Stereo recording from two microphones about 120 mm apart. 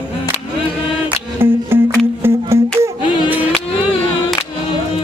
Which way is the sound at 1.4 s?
20° right (ahead or behind).